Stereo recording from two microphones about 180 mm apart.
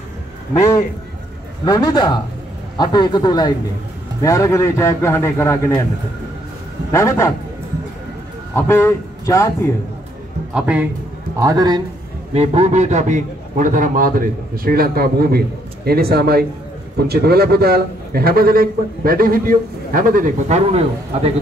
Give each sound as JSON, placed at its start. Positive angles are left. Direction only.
{"t": 1.6, "sound": "a man's voice", "side_deg": 20}
{"t": 6.9, "sound": "a man's voice", "side_deg": 15}
{"t": 8.5, "sound": "speech", "side_deg": 15}
{"t": 10.5, "sound": "a man's voice", "side_deg": -5}
{"t": 11.3, "sound": "a man's voice", "side_deg": -20}
{"t": 12.4, "sound": "a man's voice", "side_deg": -35}